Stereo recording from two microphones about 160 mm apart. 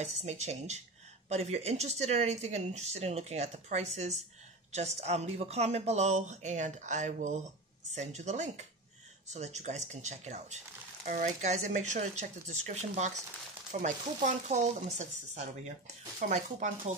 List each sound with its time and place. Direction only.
0.0 s speech: 45° right (ahead or behind)